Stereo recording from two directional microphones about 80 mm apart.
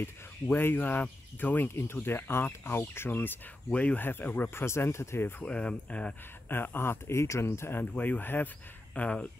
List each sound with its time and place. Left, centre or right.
0.0 s speech: left
4.6 s speech: left
5.4 s speech: centre
6.5 s speech: left
7.8 s speech: centre